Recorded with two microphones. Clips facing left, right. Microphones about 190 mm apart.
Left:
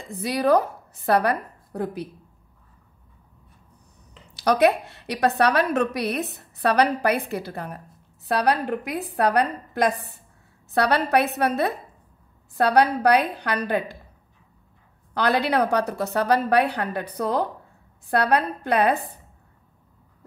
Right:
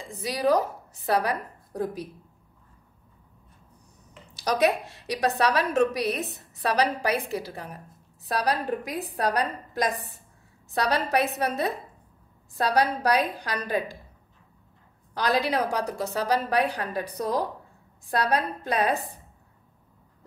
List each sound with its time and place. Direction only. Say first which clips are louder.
0.2 s a woman's voice: left 3 dB; 60° left (ahead or behind)
4.3 s a woman's voice: left 5 dB; 60° left (ahead or behind)
15.1 s a woman's voice: left 4 dB; 65° left (ahead or behind)